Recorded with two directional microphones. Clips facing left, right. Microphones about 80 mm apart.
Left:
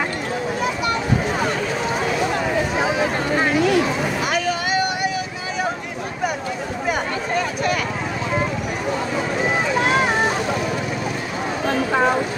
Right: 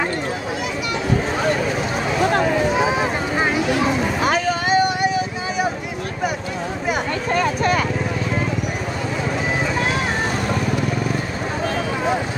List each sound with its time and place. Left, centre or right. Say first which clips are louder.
4.3 s vehicle: right 3 dB; right